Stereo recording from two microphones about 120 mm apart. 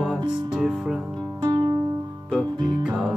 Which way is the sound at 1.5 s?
35° right (ahead or behind).